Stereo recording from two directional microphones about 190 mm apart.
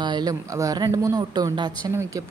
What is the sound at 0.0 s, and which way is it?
Speech, 20° right (ahead or behind).